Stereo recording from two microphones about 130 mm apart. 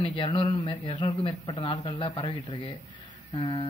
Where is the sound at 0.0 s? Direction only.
40° left (ahead or behind).